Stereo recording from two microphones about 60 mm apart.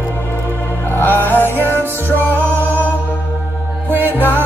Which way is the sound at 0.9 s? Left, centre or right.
Left.